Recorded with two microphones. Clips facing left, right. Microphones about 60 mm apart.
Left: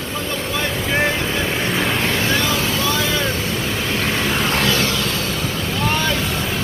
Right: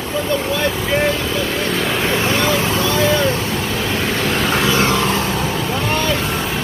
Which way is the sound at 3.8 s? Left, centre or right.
Centre.